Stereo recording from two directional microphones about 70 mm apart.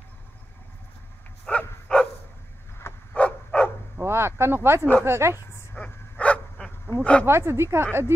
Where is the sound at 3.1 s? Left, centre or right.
Centre.